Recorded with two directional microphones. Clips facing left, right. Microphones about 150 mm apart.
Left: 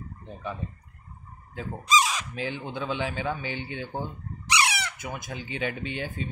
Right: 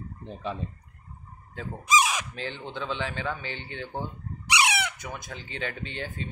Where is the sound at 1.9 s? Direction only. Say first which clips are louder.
Even; 15° right (ahead or behind).